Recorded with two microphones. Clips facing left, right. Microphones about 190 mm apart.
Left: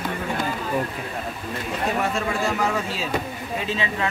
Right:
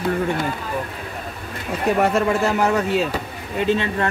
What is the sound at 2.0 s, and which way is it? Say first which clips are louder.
Speech: right 6 dB; 65° right (ahead or behind).